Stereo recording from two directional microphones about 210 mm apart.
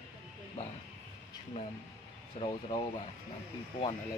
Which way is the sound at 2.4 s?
35° left (ahead or behind).